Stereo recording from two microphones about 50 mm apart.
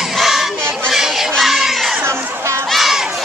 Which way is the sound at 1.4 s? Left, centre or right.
Centre.